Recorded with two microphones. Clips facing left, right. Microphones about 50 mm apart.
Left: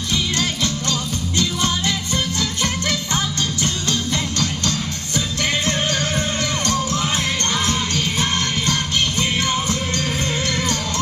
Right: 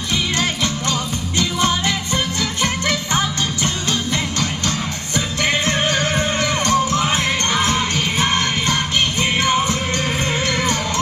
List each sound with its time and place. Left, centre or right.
0.1 s music: right